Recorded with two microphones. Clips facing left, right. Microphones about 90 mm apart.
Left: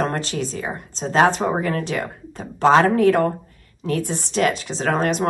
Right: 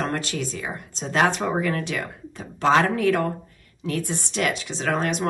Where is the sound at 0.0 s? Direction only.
35° left (ahead or behind).